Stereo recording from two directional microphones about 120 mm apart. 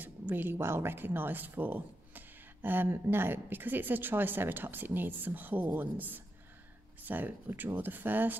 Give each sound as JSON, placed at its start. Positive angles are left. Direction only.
{"t": 0.0, "sound": "speech", "side_deg": -15}